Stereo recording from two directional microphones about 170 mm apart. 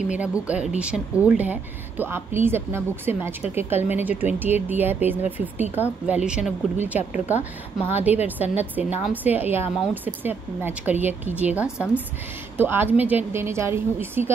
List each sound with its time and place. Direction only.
0.1 s speech: 10° right (ahead or behind)